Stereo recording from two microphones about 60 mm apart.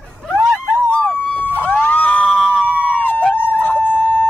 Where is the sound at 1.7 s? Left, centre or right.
Left.